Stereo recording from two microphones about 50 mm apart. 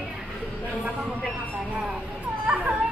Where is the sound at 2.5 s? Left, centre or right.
Right.